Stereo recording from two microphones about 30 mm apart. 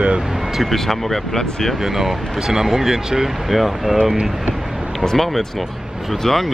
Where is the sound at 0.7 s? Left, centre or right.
Centre.